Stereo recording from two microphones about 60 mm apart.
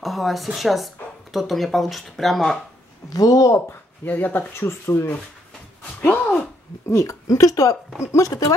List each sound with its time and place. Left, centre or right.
0.0 s speech: centre
3.1 s speech: left
4.0 s speech: left
6.9 s speech: left
8.0 s speech: left